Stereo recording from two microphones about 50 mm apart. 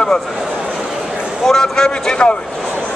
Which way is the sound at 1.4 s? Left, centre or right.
Centre.